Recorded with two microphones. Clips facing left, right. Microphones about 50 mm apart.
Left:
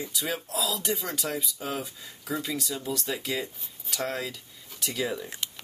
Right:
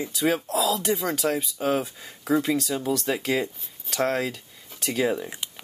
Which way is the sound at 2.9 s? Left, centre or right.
Right.